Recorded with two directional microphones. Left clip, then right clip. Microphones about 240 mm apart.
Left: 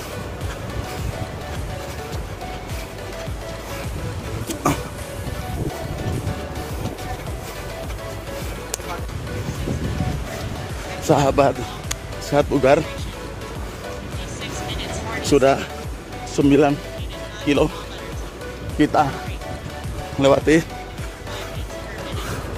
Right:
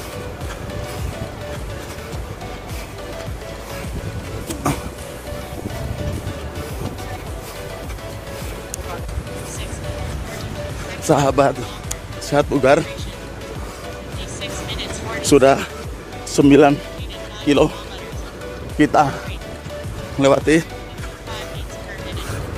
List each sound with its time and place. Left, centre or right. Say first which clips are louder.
4.6 s music: left 2 dB; centre
11.1 s speech: right 1 dB; centre
14.4 s music: right 2 dB; right
16.3 s speech: right 5 dB; right
17.5 s speech: right 3 dB; centre
18.9 s speech: right 3 dB; centre
20.2 s speech: right 1 dB; centre